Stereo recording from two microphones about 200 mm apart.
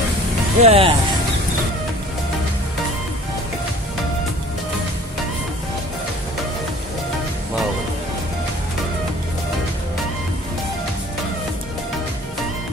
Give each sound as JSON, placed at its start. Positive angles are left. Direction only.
{"t": 0.6, "sound": "speech", "side_deg": -30}